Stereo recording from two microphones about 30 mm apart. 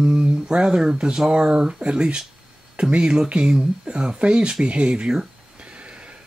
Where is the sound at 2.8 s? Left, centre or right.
Right.